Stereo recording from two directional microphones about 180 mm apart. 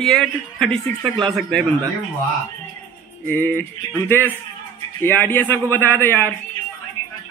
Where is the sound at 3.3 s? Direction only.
10° left (ahead or behind).